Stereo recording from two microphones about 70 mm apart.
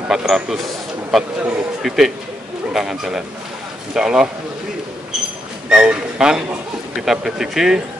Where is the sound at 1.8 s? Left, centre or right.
Centre.